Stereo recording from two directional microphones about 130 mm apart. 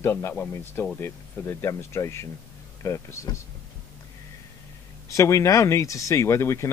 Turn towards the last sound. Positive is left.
turn(degrees=20)  # may be behind; listen again after turning